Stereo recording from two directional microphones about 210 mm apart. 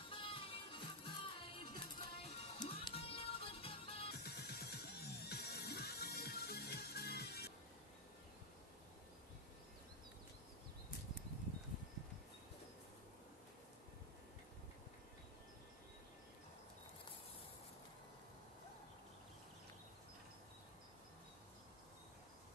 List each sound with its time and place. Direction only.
0.1 s music: 25° left (ahead or behind)
4.1 s music: 50° left (ahead or behind)